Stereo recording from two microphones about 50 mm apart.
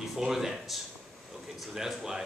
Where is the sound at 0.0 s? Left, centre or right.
Centre.